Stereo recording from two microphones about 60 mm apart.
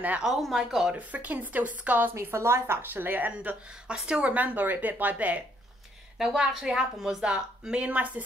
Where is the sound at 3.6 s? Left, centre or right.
Centre.